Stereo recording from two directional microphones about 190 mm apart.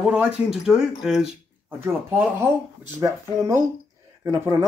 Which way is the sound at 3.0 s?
15° right (ahead or behind).